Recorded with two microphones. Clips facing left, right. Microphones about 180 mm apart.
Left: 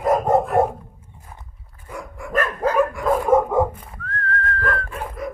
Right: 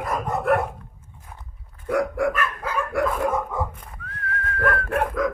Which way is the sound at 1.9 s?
80° right.